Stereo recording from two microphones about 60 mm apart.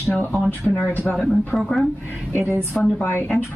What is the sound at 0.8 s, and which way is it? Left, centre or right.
Speech, left.